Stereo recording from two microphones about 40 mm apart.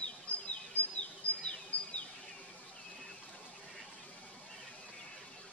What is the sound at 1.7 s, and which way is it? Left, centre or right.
Bird, left.